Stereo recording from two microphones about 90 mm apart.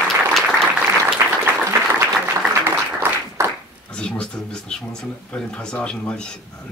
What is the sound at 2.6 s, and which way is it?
Applause, 25° right (ahead or behind).